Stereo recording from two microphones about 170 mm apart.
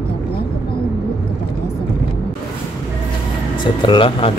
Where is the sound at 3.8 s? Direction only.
30° left (ahead or behind).